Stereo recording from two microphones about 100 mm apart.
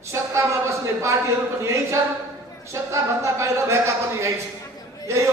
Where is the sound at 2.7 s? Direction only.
30° right (ahead or behind).